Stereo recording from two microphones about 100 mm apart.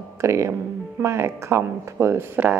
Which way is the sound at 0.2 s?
30° right (ahead or behind).